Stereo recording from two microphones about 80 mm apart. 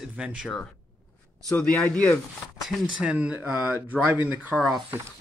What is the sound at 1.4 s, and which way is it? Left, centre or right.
Speech, centre.